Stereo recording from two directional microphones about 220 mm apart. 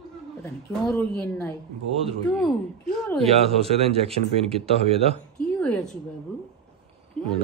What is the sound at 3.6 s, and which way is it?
Speech, 25° right (ahead or behind).